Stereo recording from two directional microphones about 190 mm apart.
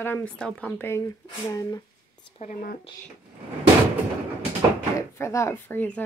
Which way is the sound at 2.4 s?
45° left (ahead or behind).